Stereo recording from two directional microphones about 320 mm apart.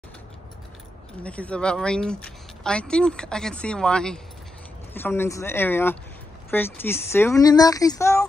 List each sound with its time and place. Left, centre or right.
1.2 s speech: centre